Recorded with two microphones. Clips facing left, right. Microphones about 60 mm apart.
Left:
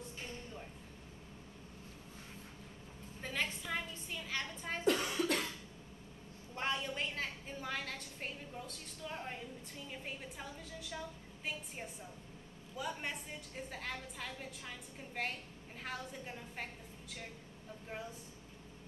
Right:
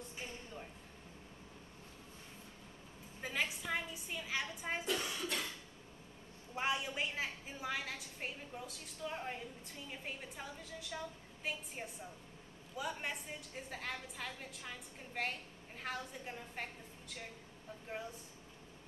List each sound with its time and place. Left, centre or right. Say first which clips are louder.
3.2 s a sound: even; centre
4.9 s cough: left 3 dB; left
6.5 s a woman's voice: right 1 dB; centre